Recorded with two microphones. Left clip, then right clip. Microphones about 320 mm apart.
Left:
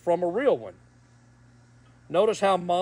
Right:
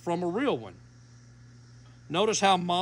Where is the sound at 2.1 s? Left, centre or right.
Centre.